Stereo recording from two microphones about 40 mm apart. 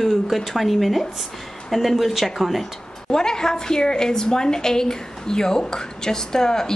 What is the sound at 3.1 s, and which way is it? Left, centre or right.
A woman's voice, centre.